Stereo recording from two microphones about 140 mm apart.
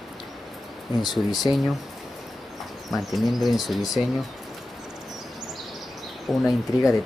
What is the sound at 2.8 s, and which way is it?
Speech, centre (ahead or behind).